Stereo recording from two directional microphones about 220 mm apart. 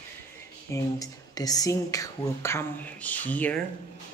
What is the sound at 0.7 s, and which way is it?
Speech, 15° left (ahead or behind).